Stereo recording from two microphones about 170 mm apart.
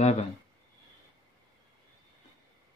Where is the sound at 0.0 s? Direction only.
40° left (ahead or behind).